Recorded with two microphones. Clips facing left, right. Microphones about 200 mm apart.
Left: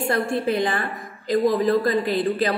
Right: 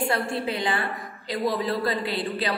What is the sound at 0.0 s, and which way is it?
A woman's voice, 45° left (ahead or behind).